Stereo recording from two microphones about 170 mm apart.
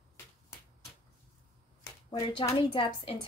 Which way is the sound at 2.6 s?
30° left (ahead or behind).